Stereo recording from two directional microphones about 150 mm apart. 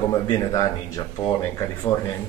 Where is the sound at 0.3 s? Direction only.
25° left (ahead or behind).